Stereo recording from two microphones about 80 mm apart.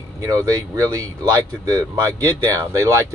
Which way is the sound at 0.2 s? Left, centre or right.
Right.